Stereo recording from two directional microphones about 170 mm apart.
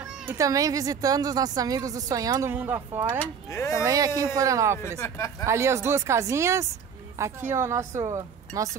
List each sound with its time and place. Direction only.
0.0 s speech: 15° right (ahead or behind)
3.2 s speech: 20° left (ahead or behind)
3.8 s speech: 20° right (ahead or behind)
5.0 s speech: 15° left (ahead or behind)
5.4 s a woman's voice: 15° right (ahead or behind)